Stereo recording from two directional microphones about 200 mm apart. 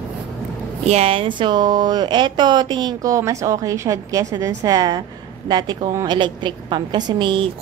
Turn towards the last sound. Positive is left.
turn(degrees=-25)  # may be behind; listen again after turning